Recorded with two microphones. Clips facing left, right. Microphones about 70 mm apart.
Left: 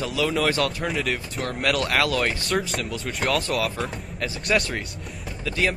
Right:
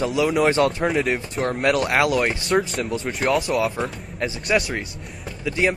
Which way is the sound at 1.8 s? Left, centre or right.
Right.